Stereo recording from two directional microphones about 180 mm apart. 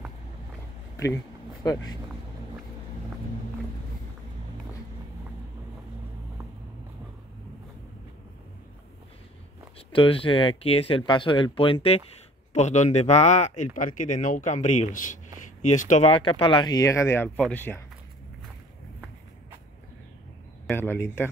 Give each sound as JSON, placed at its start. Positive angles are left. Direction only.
{"t": 0.9, "sound": "a sound", "side_deg": 15}
{"t": 9.8, "sound": "a man's voice", "side_deg": 30}
{"t": 20.7, "sound": "a man's voice", "side_deg": 10}